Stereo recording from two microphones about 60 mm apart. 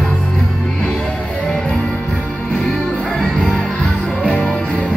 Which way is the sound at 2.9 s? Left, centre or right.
Centre.